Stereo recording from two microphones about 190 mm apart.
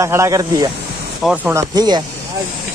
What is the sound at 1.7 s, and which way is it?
Speech, 20° right (ahead or behind).